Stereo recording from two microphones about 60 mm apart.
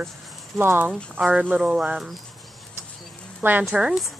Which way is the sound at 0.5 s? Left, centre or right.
Right.